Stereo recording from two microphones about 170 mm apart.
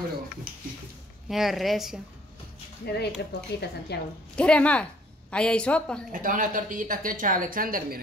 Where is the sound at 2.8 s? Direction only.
70° left (ahead or behind).